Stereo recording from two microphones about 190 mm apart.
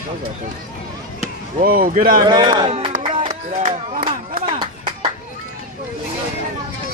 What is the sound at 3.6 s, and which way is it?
Chop, 35° right (ahead or behind).